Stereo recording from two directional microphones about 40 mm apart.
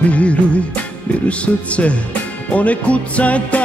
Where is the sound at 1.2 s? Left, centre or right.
Left.